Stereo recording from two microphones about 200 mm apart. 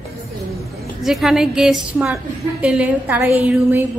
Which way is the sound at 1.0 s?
Centre (ahead or behind).